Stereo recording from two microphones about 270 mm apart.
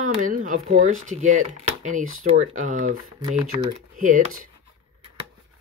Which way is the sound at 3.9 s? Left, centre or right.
Right.